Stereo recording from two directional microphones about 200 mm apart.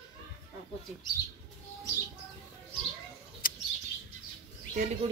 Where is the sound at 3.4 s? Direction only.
45° left (ahead or behind).